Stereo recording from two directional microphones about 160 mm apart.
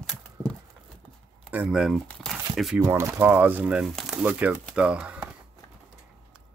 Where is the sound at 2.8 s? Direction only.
15° right (ahead or behind).